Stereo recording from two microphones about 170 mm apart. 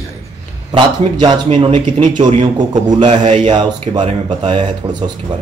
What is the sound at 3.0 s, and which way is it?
Speech, 40° right (ahead or behind).